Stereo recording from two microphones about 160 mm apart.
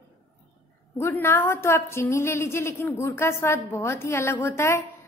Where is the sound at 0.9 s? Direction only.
15° left (ahead or behind).